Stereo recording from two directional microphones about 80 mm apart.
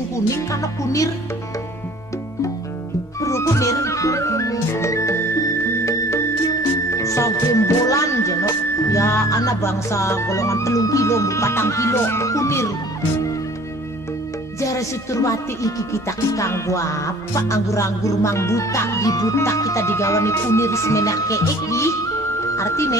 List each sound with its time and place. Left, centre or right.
0.3 s music: left
3.2 s music: left
14.6 s music: left